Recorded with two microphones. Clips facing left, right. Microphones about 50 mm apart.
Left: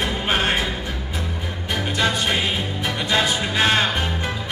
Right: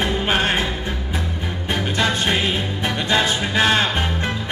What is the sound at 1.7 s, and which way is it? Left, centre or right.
Music, right.